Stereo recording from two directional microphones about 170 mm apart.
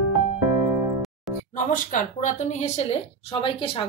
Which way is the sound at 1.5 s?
50° left (ahead or behind).